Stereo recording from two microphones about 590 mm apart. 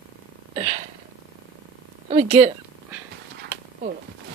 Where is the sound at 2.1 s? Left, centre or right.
Centre.